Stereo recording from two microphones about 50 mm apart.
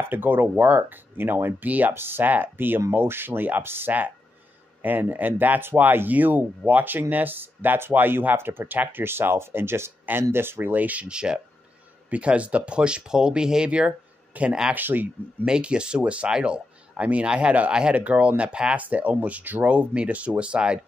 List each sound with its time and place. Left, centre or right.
0.0 s speech: right
10.8 s speech: right
11.1 s speech: centre
14.7 s speech: right
15.4 s speech: centre
18.8 s speech: right